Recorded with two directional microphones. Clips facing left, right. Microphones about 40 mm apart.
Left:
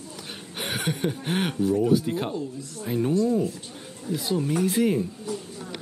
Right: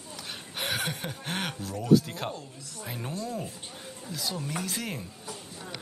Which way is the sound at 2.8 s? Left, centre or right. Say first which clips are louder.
Left 12 dB; centre.